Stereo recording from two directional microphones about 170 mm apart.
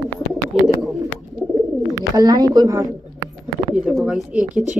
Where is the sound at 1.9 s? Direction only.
20° right (ahead or behind).